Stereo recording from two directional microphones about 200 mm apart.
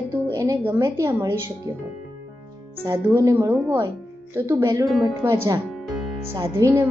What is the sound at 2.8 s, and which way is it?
A woman's voice, 15° right (ahead or behind).